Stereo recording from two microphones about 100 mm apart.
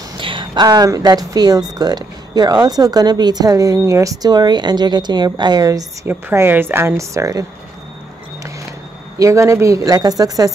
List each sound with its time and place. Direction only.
0.2 s speech: 55° right (ahead or behind); by 5.9 s 40° right (ahead or behind)
6.0 s a woman's voice: 20° right (ahead or behind)
9.2 s speech: 30° right (ahead or behind)